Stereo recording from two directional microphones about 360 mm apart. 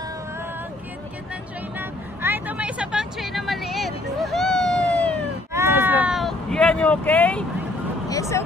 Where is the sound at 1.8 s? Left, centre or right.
Centre.